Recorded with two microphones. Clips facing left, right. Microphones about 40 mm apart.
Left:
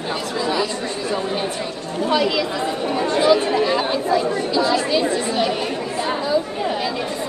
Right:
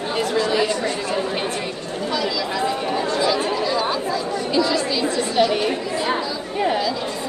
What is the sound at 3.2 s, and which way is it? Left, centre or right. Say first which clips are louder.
Speech: left 8 dB; left.